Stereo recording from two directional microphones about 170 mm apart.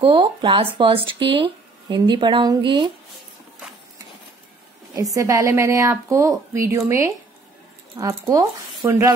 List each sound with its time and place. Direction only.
0.0 s speech: 30° right (ahead or behind)
5.1 s a woman's voice: 20° right (ahead or behind)